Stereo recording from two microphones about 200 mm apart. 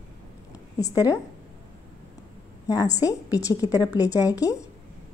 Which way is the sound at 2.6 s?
15° left (ahead or behind).